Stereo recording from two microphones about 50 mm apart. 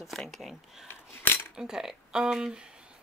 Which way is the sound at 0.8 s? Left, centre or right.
Left.